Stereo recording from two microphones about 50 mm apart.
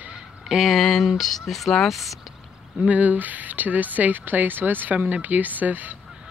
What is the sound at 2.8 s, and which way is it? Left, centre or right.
Speech, right.